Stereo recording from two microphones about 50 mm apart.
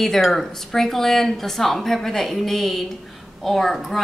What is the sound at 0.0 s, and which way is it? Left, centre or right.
A woman's voice, centre.